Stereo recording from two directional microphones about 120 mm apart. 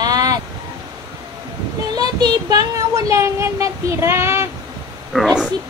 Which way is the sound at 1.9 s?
35° right (ahead or behind).